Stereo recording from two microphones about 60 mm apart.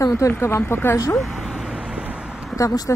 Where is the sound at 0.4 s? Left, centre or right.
Left.